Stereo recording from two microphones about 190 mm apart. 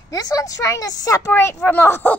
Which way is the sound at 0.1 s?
20° left (ahead or behind).